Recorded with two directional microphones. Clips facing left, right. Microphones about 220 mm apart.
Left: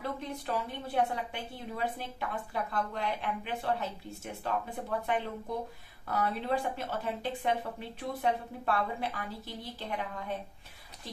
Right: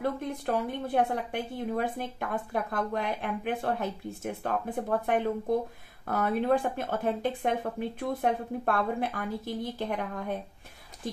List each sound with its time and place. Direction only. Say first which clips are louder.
0.0 s a woman's voice: right 6 dB; 50° right (ahead or behind)